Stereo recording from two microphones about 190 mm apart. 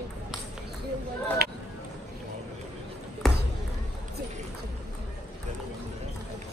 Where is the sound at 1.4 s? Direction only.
55° right (ahead or behind).